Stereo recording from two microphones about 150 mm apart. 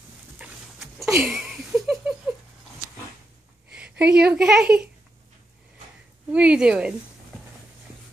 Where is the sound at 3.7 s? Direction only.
5° right (ahead or behind).